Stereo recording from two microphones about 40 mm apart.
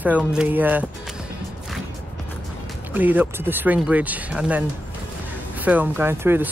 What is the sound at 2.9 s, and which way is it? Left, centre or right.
Speech, right.